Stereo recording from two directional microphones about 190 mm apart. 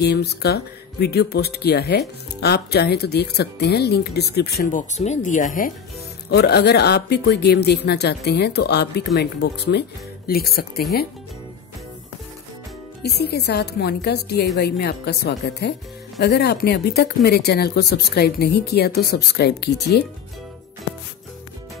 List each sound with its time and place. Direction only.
0.0 s speech: 60° left (ahead or behind); by 5.5 s 40° left (ahead or behind)
6.3 s speech: 60° left (ahead or behind)
13.0 s speech: 60° left (ahead or behind)